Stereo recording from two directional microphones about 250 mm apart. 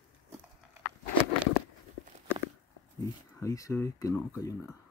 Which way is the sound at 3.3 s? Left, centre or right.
Centre.